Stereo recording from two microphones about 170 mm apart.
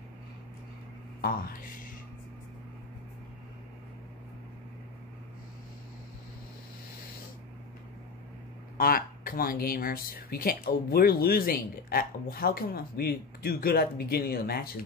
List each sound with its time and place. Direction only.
1.2 s speech: 55° left (ahead or behind)
8.7 s speech: 60° left (ahead or behind)